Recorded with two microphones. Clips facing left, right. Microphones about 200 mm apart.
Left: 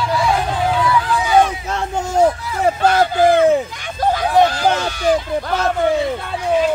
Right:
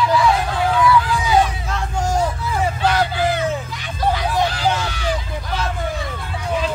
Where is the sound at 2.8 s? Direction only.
45° left (ahead or behind).